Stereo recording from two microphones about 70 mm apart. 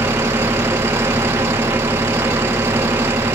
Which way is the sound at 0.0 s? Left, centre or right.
Right.